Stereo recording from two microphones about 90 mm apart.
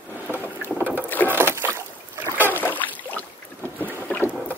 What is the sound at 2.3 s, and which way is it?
Rowboat, 20° right (ahead or behind).